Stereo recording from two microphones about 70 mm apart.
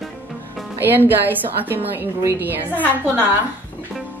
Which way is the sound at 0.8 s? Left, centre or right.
Right.